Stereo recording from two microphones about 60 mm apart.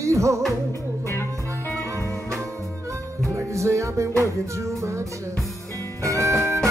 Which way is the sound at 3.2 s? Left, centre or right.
Right.